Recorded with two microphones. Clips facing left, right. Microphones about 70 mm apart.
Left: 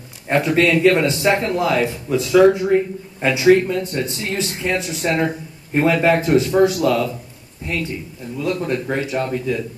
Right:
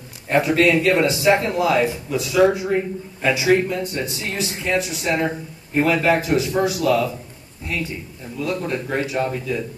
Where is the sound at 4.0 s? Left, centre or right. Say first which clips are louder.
Left 3 dB; centre.